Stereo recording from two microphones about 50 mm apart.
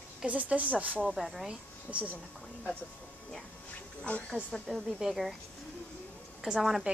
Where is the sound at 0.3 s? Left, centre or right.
Right.